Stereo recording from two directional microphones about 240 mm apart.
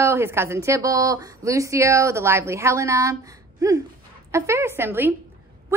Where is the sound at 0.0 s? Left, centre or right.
Centre.